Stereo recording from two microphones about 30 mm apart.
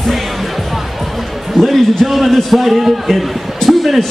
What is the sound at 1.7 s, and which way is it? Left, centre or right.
A man's voice, centre.